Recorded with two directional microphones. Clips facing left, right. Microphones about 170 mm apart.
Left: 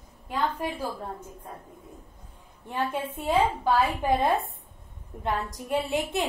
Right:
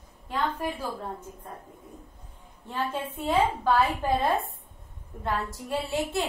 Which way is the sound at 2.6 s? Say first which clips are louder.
Left 2 dB; 15° left (ahead or behind).